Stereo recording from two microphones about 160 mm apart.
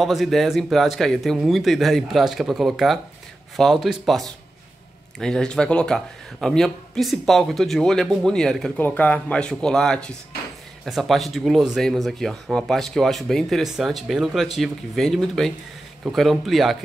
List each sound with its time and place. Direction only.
0.0 s speech: centre (ahead or behind)